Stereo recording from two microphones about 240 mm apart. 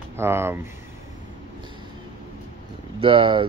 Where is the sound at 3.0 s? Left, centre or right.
Right.